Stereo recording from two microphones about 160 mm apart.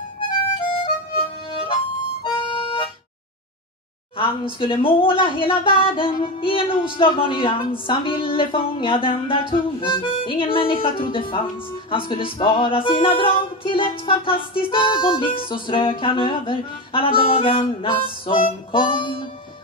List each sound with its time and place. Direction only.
0.6 s music: 35° left (ahead or behind)
4.2 s music: 35° left (ahead or behind)